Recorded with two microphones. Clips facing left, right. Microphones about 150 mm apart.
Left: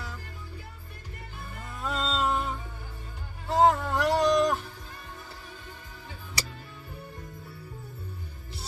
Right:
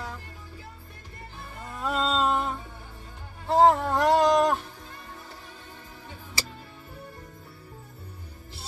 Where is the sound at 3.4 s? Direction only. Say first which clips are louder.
Right 3 dB; 30° right (ahead or behind).